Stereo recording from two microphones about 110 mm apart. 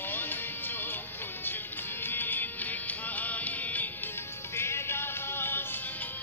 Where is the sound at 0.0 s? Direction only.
20° left (ahead or behind).